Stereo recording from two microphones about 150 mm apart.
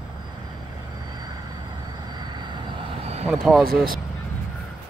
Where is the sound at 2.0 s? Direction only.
30° right (ahead or behind).